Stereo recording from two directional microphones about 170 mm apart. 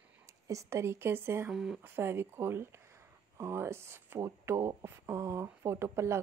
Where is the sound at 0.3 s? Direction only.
20° right (ahead or behind).